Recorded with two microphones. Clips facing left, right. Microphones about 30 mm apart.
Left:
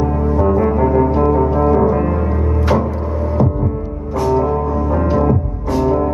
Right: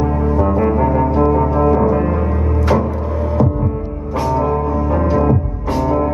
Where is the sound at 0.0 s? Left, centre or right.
Centre.